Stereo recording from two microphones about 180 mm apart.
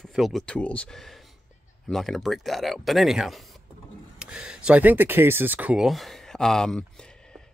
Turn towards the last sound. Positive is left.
turn(degrees=5)  # may be behind; listen again after turning